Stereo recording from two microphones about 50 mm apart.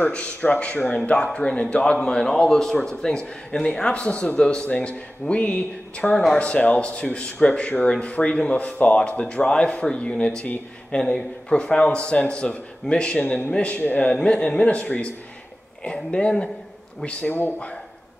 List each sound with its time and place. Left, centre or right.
0.1 s a man's voice: left
6.0 s speech: centre
6.3 s a man's voice: left
17.3 s speech: left